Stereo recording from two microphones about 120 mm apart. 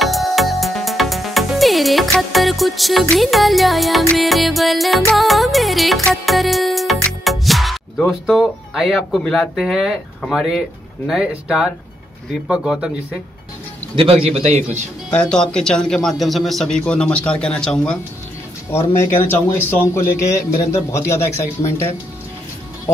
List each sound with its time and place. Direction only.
0.0 s music: centre (ahead or behind)
4.1 s a man's voice: centre (ahead or behind)
5.1 s music: centre (ahead or behind)
7.1 s a man's voice: centre (ahead or behind)
14.2 s a man's voice: 60° right (ahead or behind)
15.0 s a man's voice: 10° left (ahead or behind)
18.7 s speech: 20° left (ahead or behind)